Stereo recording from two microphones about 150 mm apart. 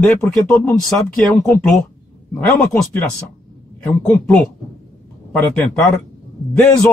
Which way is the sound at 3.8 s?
10° left (ahead or behind).